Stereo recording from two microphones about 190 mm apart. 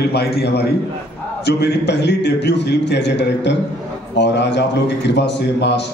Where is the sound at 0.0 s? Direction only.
60° left (ahead or behind).